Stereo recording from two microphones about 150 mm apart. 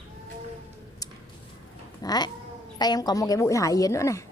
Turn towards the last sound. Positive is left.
turn(degrees=20)  # may be behind; listen again after turning